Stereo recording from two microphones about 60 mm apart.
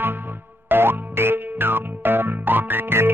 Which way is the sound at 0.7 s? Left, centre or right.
Right.